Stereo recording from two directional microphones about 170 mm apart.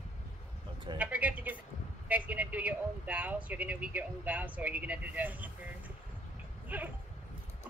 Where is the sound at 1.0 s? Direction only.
10° right (ahead or behind).